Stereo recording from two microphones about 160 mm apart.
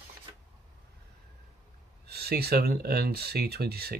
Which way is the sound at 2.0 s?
85° right.